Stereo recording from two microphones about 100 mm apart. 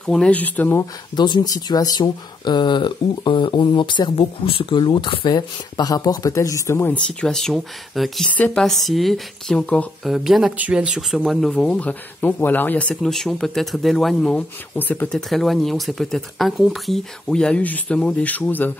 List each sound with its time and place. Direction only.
0.0 s speech: 10° left (ahead or behind)
1.1 s speech: 45° left (ahead or behind); by 6.9 s 30° left (ahead or behind)
6.9 s speech: 10° left (ahead or behind)
10.0 s speech: 5° right (ahead or behind); by 12.9 s 15° left (ahead or behind)
13.0 s speech: 5° left (ahead or behind)
14.8 s speech: 20° left (ahead or behind)
15.0 s speech: 5° left (ahead or behind)